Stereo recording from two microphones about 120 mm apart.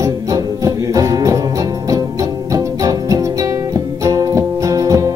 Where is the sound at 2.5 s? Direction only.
30° right (ahead or behind).